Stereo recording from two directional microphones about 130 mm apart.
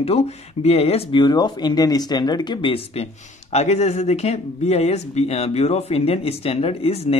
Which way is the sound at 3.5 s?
55° left (ahead or behind).